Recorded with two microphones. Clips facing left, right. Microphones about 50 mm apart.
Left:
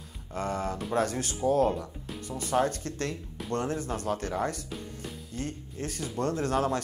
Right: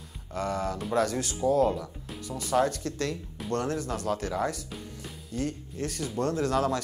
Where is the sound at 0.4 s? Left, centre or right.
Left.